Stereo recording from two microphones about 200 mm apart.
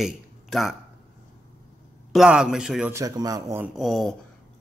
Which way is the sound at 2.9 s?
15° right (ahead or behind).